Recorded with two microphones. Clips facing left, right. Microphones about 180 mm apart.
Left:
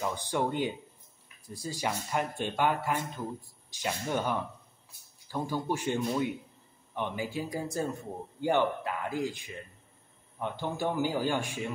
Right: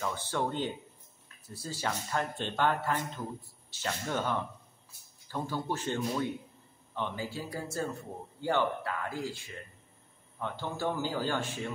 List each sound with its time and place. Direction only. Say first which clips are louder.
0.0 s a man's voice: left 2 dB; 15° left (ahead or behind)